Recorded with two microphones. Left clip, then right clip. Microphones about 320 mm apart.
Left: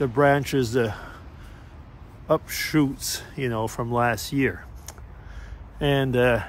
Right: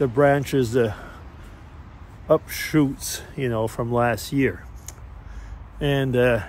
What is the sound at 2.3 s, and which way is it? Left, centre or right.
A man's voice, centre.